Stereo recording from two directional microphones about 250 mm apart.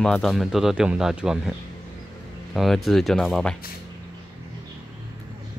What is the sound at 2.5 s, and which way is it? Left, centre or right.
Speech, centre.